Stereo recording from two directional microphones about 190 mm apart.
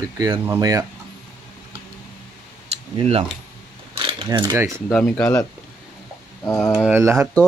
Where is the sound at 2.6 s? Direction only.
30° right (ahead or behind).